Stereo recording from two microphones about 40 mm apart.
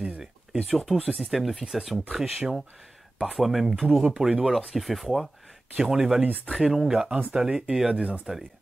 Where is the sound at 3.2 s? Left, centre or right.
Centre.